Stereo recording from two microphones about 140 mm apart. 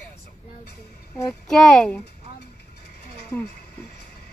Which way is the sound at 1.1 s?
20° left (ahead or behind).